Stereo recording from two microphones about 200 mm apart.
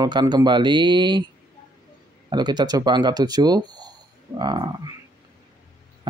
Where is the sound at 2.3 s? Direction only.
20° right (ahead or behind).